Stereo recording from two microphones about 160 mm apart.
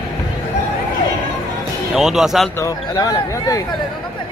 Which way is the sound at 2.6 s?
25° left (ahead or behind).